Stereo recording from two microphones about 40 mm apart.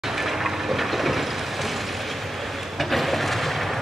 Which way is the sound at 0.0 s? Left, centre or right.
Centre.